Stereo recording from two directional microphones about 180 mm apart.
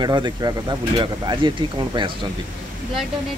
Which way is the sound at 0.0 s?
25° right (ahead or behind).